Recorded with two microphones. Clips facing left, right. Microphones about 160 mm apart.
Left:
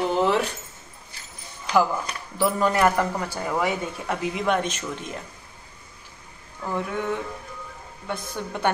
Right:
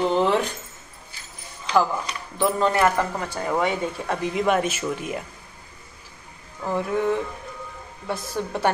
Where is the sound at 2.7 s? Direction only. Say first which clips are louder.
Even; 10° left (ahead or behind); by 5.2 s 10° right (ahead or behind).